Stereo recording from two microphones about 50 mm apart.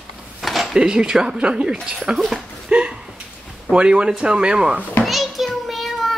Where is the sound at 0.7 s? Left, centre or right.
Centre.